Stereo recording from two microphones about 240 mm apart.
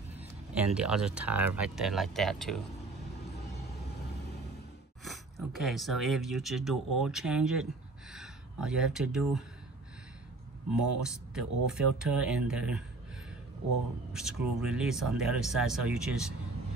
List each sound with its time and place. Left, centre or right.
0.1 s speech: centre
3.3 s vehicle: left
5.0 s speech: centre
11.0 s speech: centre
14.1 s speech: centre